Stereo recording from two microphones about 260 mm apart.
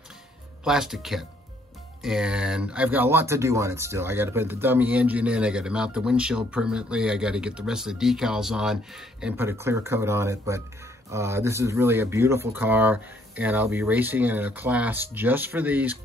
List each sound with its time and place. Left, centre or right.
0.7 s speech: centre